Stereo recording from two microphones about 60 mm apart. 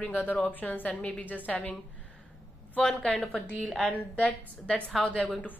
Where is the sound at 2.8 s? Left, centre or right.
Centre.